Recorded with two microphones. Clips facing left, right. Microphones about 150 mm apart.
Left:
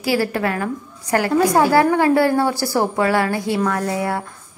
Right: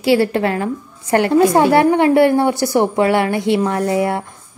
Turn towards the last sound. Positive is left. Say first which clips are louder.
# right 4 dB
turn(degrees=-20)  # may be behind; listen again after turning